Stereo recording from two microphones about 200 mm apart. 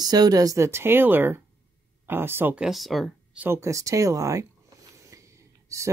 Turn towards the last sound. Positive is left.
turn(degrees=-15)  # may be behind; listen again after turning